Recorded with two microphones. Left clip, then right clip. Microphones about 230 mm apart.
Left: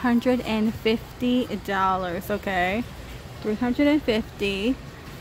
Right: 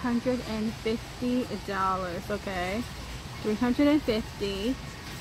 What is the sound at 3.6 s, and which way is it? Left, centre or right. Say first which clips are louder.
Speech: left 3 dB; centre.